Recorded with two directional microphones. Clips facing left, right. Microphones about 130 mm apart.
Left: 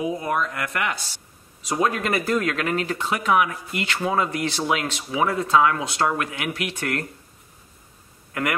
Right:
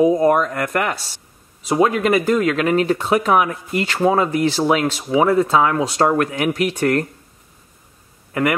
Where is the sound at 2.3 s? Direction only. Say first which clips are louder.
Right 7 dB; 30° right (ahead or behind).